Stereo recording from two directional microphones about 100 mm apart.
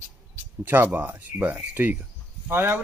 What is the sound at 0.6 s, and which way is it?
Speech, 20° right (ahead or behind).